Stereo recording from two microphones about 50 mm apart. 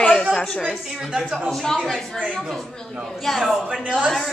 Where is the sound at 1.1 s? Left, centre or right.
Centre.